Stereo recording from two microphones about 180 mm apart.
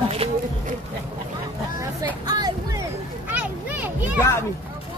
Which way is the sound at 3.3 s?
10° right (ahead or behind).